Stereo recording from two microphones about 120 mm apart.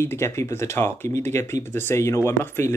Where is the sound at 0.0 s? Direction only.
20° left (ahead or behind).